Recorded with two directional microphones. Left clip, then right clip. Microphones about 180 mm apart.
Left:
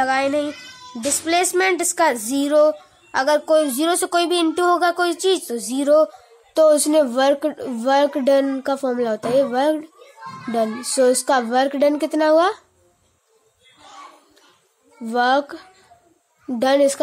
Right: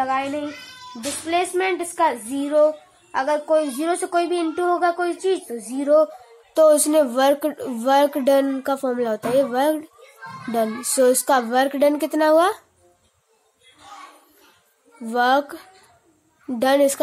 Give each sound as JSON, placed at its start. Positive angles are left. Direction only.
{"t": 0.0, "sound": "a child's voice", "side_deg": 35}
{"t": 6.5, "sound": "speech", "side_deg": 10}
{"t": 15.0, "sound": "a woman's voice", "side_deg": 5}